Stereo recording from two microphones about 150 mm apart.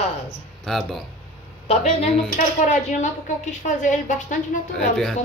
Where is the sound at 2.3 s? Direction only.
55° left (ahead or behind).